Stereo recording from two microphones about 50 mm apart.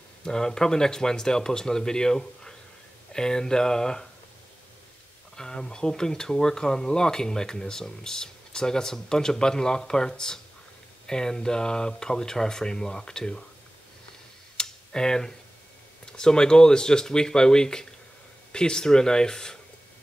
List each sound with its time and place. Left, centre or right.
0.2 s speech: centre
5.3 s speech: centre
14.6 s a sound: centre
16.1 s speech: centre